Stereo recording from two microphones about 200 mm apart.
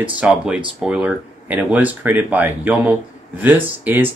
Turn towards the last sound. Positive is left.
turn(degrees=-10)  # may be behind; listen again after turning